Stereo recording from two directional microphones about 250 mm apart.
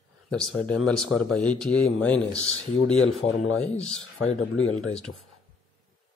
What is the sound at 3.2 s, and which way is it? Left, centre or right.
Speech, left.